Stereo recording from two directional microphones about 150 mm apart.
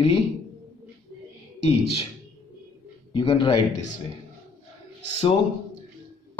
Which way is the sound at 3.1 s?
35° left (ahead or behind).